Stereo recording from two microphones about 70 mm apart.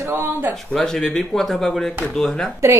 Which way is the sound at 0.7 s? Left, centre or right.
Centre.